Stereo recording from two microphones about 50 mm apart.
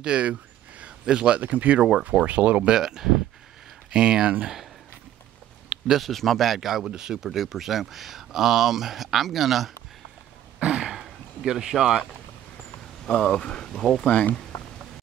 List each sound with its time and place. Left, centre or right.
0.0 s a sound: right
1.4 s speech: right
1.8 s speech: centre
2.2 s speech: right
2.7 s speech: centre
5.9 s speech: centre
10.6 s throat clearing: centre
11.0 s a sound: centre
11.8 s speech: centre
13.0 s speech: centre
14.0 s speech: left